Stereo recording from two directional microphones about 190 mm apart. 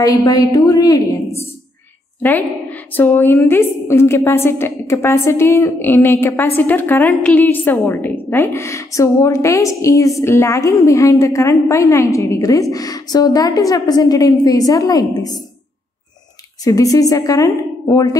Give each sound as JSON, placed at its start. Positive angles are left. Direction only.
{"t": 0.0, "sound": "a woman's voice", "side_deg": 20}
{"t": 2.2, "sound": "a woman's voice", "side_deg": 10}
{"t": 16.6, "sound": "a woman's voice", "side_deg": 20}